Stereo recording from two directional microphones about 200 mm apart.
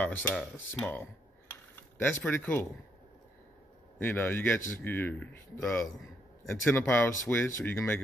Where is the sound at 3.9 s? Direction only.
10° left (ahead or behind).